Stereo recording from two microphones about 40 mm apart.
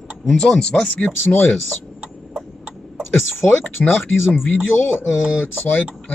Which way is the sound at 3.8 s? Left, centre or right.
Left.